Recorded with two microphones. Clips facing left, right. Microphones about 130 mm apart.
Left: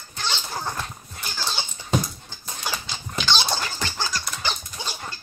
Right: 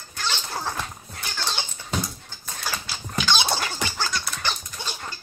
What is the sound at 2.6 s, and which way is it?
Dog, 20° left (ahead or behind).